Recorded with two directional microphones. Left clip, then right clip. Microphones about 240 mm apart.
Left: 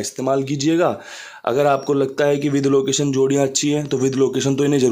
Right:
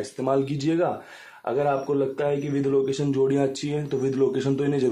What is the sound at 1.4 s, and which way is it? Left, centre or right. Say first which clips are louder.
A man's voice: left 7 dB; left.